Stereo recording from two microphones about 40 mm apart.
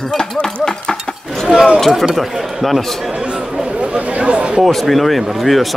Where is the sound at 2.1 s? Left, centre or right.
Centre.